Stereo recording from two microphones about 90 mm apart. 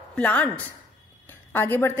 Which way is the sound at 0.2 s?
15° left (ahead or behind).